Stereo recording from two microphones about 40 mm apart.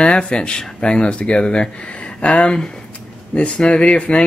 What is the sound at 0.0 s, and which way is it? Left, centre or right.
Speech, left.